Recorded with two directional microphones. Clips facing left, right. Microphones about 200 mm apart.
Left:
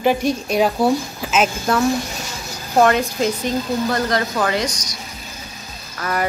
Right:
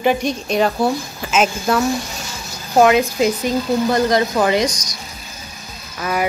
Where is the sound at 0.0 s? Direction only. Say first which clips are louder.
Even; 5° left (ahead or behind).